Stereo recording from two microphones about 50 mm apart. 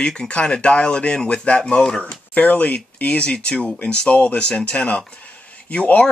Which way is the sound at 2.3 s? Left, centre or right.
Left.